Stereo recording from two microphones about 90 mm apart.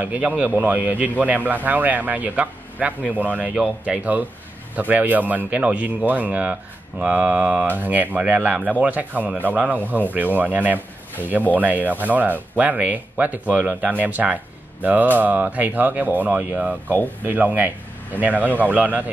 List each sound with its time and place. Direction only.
0.0 s speech: 15° right (ahead or behind)